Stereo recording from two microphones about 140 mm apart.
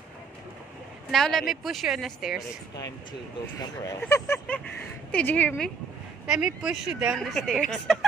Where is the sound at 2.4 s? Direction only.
25° left (ahead or behind).